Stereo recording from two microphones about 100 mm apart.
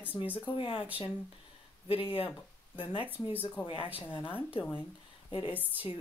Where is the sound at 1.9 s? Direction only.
65° left (ahead or behind).